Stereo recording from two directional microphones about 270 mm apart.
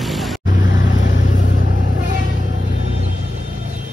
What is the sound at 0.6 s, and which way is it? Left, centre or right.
Vehicle, left.